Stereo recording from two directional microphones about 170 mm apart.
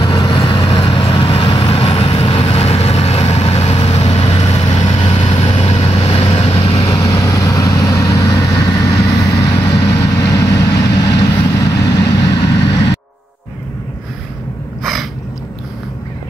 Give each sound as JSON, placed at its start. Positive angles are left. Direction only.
{"t": 0.0, "sound": "vehicle", "side_deg": 25}
{"t": 6.8, "sound": "vehicle", "side_deg": 20}
{"t": 14.8, "sound": "a sound", "side_deg": 0}